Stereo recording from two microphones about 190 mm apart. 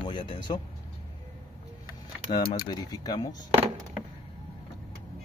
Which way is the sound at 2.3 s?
20° left (ahead or behind).